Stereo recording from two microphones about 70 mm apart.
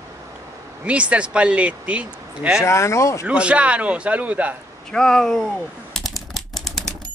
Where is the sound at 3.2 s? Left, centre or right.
Centre.